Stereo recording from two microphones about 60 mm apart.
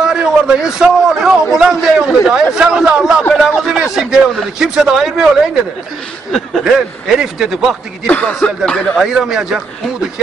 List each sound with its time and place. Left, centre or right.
0.0 s a sound: centre
1.0 s a man's voice: centre
3.3 s a sound: centre
4.6 s a man's voice: centre
6.6 s a man's voice: centre
8.1 s a man's voice: left
8.9 s a man's voice: centre